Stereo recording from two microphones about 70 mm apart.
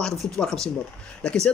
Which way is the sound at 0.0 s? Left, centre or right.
Centre.